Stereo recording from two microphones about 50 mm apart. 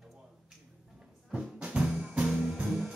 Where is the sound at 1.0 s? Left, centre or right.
Centre.